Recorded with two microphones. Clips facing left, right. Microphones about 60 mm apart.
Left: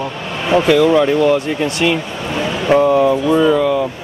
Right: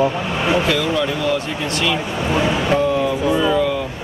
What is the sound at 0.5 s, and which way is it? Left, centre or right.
Speech, centre.